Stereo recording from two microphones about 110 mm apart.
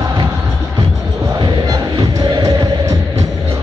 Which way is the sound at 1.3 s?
40° right (ahead or behind).